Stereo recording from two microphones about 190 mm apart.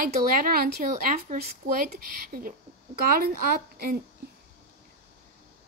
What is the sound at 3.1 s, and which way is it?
Speech, 50° right (ahead or behind).